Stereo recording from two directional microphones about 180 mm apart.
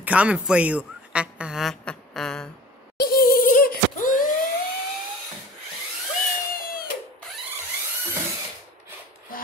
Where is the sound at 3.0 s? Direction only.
60° left (ahead or behind).